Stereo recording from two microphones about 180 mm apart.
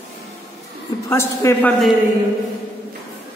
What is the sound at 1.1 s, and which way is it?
Speech, 15° left (ahead or behind).